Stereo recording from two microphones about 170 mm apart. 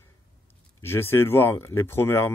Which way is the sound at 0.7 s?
15° left (ahead or behind).